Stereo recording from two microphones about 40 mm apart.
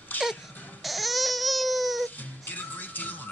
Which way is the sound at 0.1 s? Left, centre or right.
Left.